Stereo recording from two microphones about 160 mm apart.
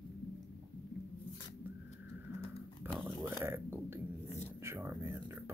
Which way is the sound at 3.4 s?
15° right (ahead or behind).